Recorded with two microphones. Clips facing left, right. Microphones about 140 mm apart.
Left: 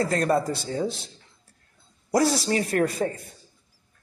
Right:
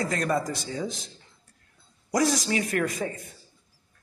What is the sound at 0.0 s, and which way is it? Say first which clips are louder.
Speech: left 4 dB; 35° left (ahead or behind).